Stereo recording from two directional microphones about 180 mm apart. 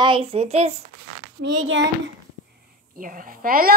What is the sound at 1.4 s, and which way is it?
Speech, 75° right (ahead or behind).